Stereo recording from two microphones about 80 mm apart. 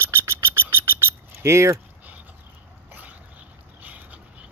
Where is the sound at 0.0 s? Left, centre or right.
Right.